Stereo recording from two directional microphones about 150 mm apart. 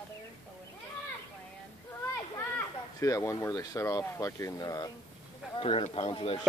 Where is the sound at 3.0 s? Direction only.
20° left (ahead or behind).